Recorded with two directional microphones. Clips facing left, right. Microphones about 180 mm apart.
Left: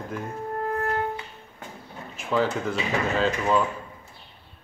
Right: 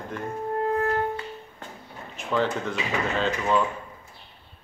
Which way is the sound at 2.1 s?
5° left (ahead or behind).